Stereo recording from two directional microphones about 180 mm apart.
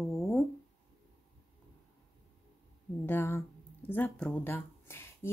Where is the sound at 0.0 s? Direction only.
Centre (ahead or behind).